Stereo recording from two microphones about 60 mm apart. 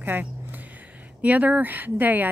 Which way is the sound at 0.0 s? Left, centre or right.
Right.